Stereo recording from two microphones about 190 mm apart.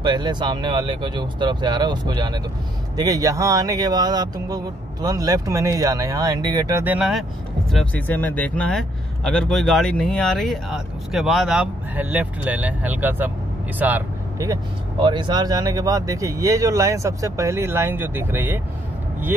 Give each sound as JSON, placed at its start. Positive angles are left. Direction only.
{"t": 0.0, "sound": "speech", "side_deg": -25}
{"t": 6.8, "sound": "speech", "side_deg": -5}
{"t": 7.7, "sound": "speech", "side_deg": 10}